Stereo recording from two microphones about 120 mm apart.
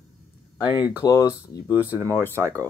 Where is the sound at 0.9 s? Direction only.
25° left (ahead or behind).